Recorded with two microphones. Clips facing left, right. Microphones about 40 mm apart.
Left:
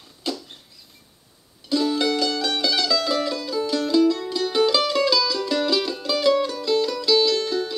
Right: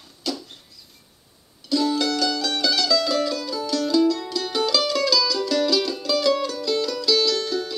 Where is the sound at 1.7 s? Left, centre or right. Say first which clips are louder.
Even; centre.